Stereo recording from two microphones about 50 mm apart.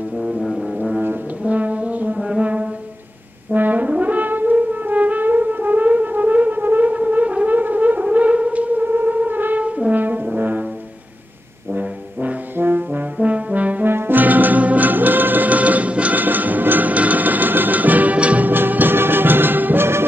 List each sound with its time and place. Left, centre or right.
0.2 s music: centre
1.4 s brass instrument: right
11.7 s brass instrument: right
13.2 s brass instrument: right
13.8 s music: right
18.5 s music: right